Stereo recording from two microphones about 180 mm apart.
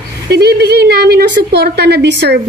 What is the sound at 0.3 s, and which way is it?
A woman's voice, 65° right (ahead or behind).